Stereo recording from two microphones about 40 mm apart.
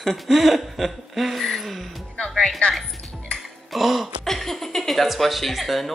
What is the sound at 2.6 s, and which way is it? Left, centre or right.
Speech, left.